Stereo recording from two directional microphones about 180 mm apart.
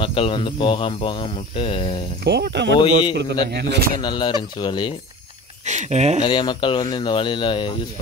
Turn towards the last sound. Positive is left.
turn(degrees=25)  # may be behind; listen again after turning